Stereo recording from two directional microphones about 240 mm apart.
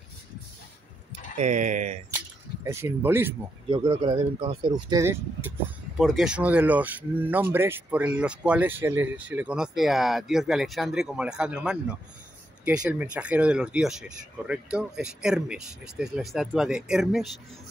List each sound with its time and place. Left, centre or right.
1.4 s speech: right
2.1 s keys jangling: centre
3.6 s speech: right; by 17.3 s centre